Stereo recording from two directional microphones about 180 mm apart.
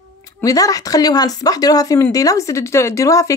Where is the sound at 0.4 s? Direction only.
20° left (ahead or behind).